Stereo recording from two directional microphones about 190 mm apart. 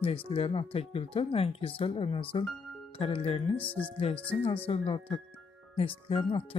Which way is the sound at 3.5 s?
10° left (ahead or behind).